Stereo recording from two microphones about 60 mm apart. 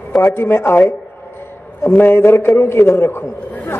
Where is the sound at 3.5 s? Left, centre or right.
Left.